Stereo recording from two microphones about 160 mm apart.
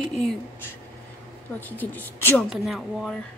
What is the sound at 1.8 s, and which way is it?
Speech, 10° left (ahead or behind).